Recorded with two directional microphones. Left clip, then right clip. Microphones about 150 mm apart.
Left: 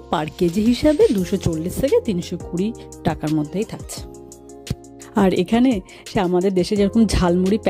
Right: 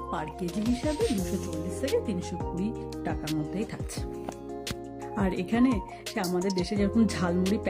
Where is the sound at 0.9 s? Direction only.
Centre (ahead or behind).